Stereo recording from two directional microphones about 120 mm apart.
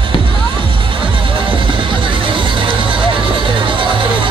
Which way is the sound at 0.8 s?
45° right (ahead or behind).